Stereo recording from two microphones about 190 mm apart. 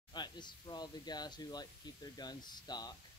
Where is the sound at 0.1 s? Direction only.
25° left (ahead or behind).